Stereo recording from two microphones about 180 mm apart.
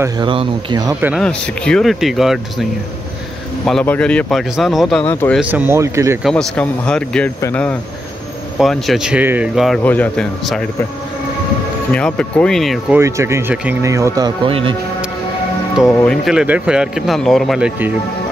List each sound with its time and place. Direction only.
0.0 s speech: 25° right (ahead or behind)
1.2 s speech: 5° left (ahead or behind)
3.6 s speech: 5° left (ahead or behind)
5.0 s speech: 10° left (ahead or behind)
5.4 s speech: 10° right (ahead or behind)
6.2 s speech: 5° left (ahead or behind)
9.8 s speech: 5° left (ahead or behind)
11.9 s speech: 5° left (ahead or behind)
12.9 s speech: 15° right (ahead or behind)
15.9 s speech: 10° left (ahead or behind)
16.3 s speech: 5° right (ahead or behind)